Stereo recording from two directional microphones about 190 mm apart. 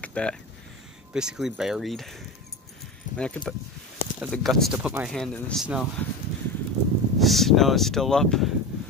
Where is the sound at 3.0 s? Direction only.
40° left (ahead or behind).